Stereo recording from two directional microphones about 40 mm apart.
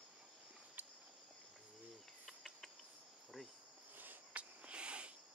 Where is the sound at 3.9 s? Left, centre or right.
Right.